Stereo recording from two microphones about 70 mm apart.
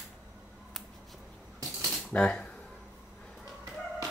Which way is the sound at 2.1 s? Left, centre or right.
Centre.